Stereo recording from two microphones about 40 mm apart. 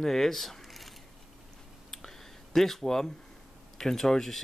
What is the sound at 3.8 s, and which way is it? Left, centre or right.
Speech, centre.